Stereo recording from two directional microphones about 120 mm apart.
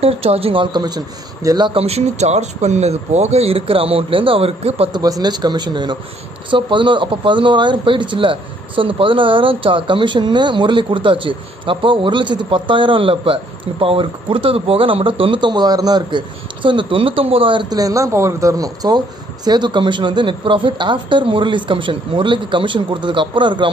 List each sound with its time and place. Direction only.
0.0 s speech: 55° right (ahead or behind)
0.7 s speech: 35° right (ahead or behind)
1.7 s speech: 55° right (ahead or behind)
4.9 s speech: 35° right (ahead or behind)